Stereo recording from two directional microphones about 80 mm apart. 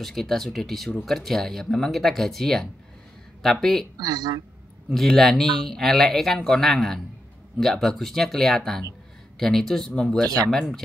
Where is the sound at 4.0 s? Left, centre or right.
Right.